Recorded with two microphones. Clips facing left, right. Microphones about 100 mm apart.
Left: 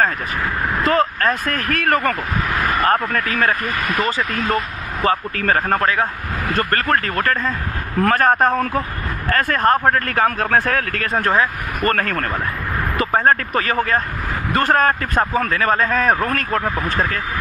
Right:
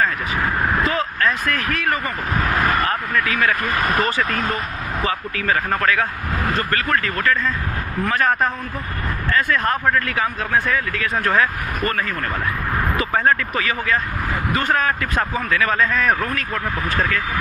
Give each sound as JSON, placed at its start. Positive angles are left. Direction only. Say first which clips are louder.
{"t": 0.8, "sound": "speech", "louder": "left 4 dB", "side_deg": 45}
{"t": 1.7, "sound": "speech", "louder": "left 4 dB", "side_deg": 55}
{"t": 2.8, "sound": "speech", "louder": "left 3 dB", "side_deg": 35}
{"t": 3.6, "sound": "speech", "louder": "right 1 dB", "side_deg": -35}
{"t": 5.0, "sound": "speech", "louder": "left 5 dB", "side_deg": 45}
{"t": 5.8, "sound": "speech", "louder": "left 1 dB", "side_deg": 25}
{"t": 6.5, "sound": "speech", "louder": "left 4 dB", "side_deg": 50}
{"t": 11.2, "sound": "speech", "louder": "even", "side_deg": 30}
{"t": 11.9, "sound": "speech", "louder": "left 4 dB", "side_deg": 55}
{"t": 13.0, "sound": "speech", "louder": "left 4 dB", "side_deg": 40}
{"t": 16.3, "sound": "speech", "louder": "left 4 dB", "side_deg": 50}